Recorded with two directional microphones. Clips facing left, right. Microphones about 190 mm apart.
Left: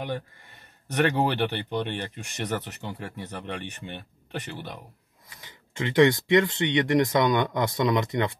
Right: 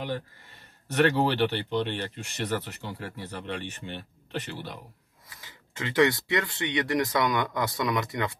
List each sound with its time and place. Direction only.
0.9 s speech: 15° left (ahead or behind)
5.4 s speech: 20° left (ahead or behind)